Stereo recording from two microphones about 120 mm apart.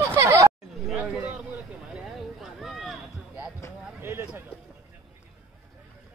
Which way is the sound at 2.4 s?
Centre (ahead or behind).